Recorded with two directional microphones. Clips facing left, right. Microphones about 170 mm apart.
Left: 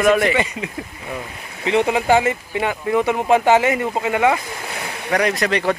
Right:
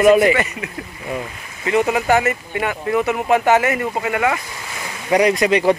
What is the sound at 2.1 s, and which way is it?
Speech, 15° left (ahead or behind).